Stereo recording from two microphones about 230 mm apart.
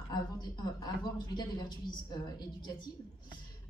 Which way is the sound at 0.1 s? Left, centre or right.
Centre.